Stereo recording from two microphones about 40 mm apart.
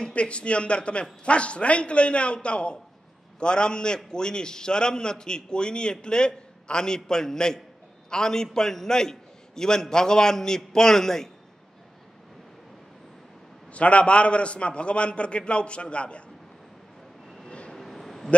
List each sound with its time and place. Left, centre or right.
0.1 s a man's voice: left; by 11.2 s centre
13.7 s a man's voice: left
17.5 s vehicle: left
17.7 s a sound: centre